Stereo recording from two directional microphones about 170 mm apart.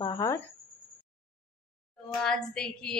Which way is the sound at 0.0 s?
20° left (ahead or behind).